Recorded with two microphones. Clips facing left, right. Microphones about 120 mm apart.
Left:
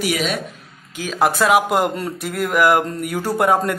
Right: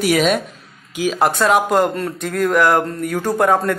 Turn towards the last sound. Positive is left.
turn(degrees=10)  # may be behind; listen again after turning